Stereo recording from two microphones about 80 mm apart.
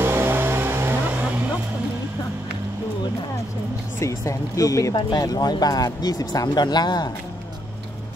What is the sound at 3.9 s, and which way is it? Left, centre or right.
Speech, left.